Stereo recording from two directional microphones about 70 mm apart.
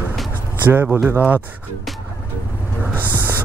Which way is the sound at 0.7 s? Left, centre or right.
Right.